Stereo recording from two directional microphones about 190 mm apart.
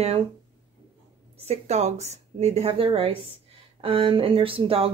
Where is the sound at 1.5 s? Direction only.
35° right (ahead or behind).